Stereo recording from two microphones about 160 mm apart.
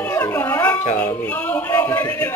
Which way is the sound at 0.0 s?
10° left (ahead or behind).